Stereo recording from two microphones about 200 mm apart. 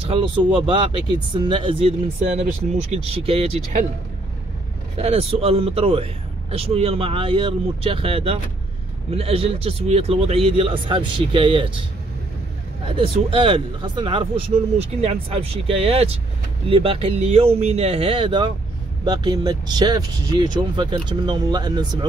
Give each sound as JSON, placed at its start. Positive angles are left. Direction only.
{"t": 0.0, "sound": "speech", "side_deg": -25}
{"t": 4.9, "sound": "speech", "side_deg": -30}
{"t": 12.8, "sound": "speech", "side_deg": -25}